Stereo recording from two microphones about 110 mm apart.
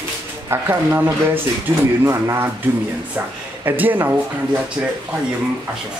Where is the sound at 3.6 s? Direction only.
15° right (ahead or behind).